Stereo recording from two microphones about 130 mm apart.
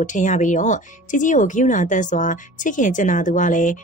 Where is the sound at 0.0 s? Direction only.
70° left (ahead or behind).